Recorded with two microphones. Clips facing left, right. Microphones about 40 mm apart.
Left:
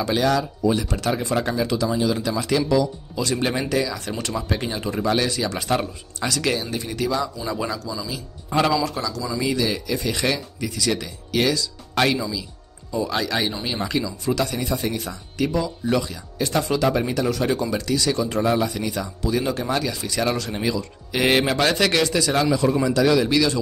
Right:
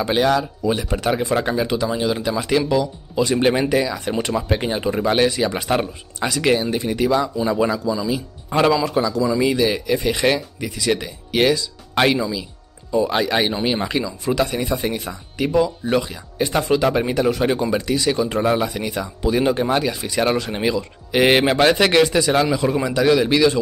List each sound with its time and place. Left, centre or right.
0.0 s speech: right